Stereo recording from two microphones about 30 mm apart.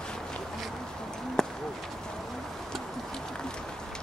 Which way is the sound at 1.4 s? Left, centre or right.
Left.